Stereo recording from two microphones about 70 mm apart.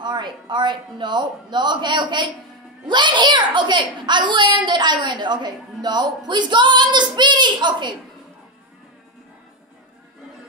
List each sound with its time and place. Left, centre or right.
0.0 s a woman's voice: right